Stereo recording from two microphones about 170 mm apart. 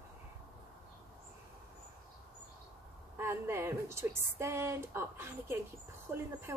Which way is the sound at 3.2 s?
15° right (ahead or behind).